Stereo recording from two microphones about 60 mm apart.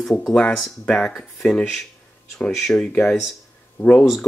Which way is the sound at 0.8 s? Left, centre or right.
Centre.